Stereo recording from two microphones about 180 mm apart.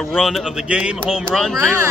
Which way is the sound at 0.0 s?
Centre (ahead or behind).